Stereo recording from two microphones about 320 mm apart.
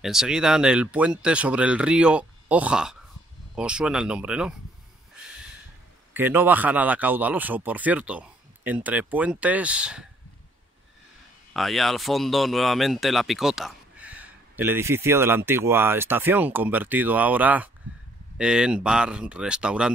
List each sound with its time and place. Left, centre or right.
0.0 s speech: centre
6.1 s speech: centre
11.5 s speech: centre